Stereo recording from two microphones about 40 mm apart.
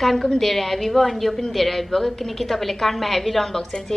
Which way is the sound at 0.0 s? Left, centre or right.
Centre.